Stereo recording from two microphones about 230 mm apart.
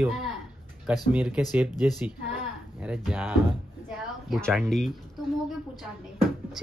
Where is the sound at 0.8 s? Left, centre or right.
Centre.